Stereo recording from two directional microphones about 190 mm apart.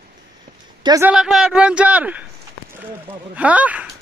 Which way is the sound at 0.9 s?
15° right (ahead or behind).